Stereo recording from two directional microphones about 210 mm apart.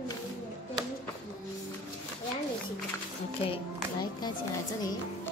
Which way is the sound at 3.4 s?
25° left (ahead or behind).